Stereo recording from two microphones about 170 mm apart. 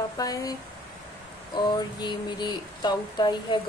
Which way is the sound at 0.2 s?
20° left (ahead or behind).